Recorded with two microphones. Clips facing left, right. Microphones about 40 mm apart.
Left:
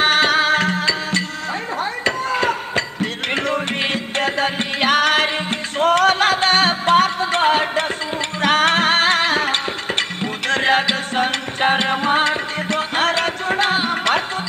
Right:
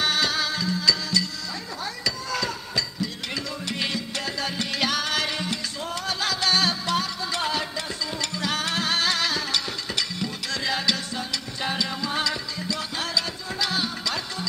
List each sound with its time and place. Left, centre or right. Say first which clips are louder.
0.0 s music: left 9 dB; left
2.0 s music: left 9 dB; left